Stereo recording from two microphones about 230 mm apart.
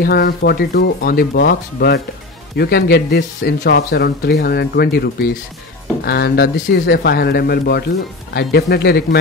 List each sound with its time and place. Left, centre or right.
0.0 s speech: left